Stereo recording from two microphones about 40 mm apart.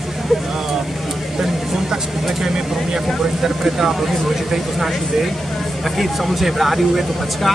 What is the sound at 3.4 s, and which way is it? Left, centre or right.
Speech, centre.